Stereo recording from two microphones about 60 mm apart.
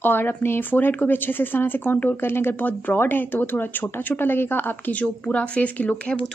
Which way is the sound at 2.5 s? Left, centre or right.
Left.